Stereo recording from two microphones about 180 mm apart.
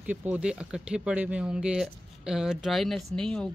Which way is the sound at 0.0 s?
10° right (ahead or behind).